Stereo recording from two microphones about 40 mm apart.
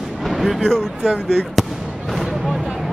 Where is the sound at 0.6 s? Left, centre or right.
Centre.